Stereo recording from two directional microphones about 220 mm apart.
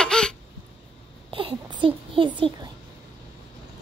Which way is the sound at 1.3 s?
20° right (ahead or behind).